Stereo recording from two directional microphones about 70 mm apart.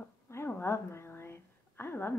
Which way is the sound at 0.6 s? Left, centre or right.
Left.